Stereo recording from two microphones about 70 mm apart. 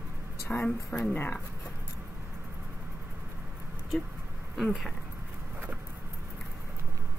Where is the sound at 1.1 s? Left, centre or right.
Left.